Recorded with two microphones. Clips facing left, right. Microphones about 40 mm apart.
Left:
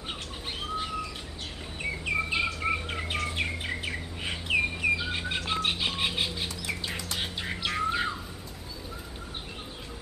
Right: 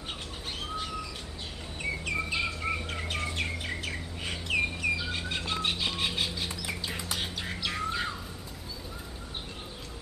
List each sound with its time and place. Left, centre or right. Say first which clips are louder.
0.6 s bird: left 3 dB; centre
1.8 s chirp: left 2 dB; centre
5.5 s music: left 2 dB; centre
7.2 s bird: left 2 dB; centre